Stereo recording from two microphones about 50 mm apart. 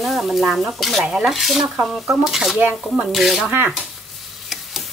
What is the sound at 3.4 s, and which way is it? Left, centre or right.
Speech, right.